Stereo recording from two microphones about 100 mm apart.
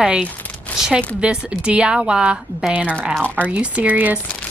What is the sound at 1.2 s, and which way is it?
A woman's voice, 10° right (ahead or behind).